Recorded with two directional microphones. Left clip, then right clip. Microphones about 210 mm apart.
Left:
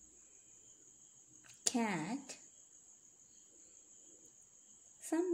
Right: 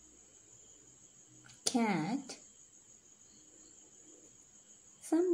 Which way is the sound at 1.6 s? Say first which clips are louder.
Right 4 dB; 10° left (ahead or behind).